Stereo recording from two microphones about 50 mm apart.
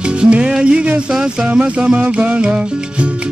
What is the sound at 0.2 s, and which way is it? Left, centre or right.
Music, centre.